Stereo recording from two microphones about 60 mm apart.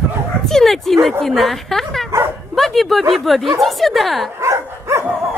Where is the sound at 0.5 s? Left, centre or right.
Centre.